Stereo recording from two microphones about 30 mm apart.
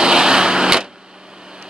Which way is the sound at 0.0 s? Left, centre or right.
Right.